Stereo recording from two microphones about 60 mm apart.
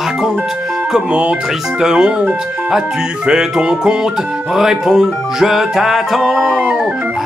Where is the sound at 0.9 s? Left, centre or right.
Centre.